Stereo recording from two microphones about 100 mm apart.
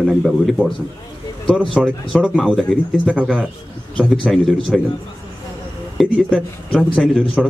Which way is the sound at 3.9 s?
5° left (ahead or behind).